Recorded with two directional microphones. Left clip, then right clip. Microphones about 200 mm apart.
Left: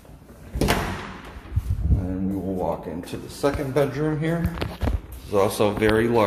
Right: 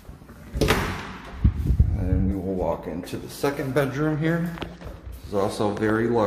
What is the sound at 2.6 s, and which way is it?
Speech, 10° right (ahead or behind).